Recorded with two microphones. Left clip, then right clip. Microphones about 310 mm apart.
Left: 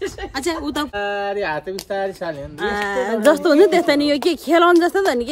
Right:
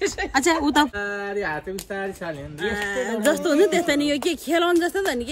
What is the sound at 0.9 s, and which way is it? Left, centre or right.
Speech, left.